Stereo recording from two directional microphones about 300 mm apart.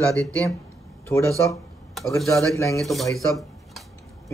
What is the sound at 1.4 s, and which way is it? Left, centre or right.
A woman's voice, centre.